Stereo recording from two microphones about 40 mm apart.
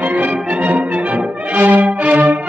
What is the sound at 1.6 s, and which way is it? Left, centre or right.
Violin, right.